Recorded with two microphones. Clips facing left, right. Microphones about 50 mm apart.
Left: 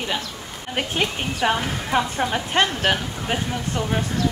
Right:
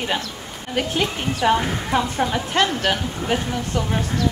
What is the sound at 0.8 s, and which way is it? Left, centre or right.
Speech, left.